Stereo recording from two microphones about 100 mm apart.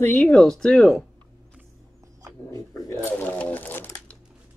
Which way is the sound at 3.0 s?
15° left (ahead or behind).